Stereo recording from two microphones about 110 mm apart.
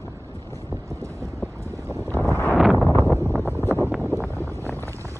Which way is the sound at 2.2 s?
20° left (ahead or behind).